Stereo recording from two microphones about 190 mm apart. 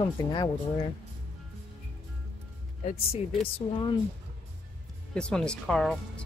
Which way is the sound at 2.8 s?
30° left (ahead or behind).